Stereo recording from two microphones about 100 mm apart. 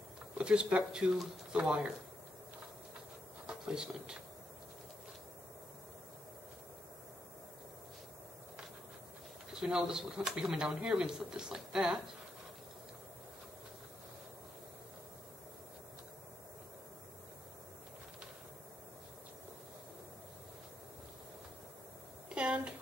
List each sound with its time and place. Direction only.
0.4 s speech: 10° right (ahead or behind)
3.4 s speech: 5° right (ahead or behind)
9.5 s speech: 5° right (ahead or behind)
22.3 s a sound: 10° right (ahead or behind)